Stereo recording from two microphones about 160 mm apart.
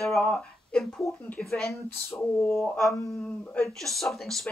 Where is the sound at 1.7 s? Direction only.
15° left (ahead or behind).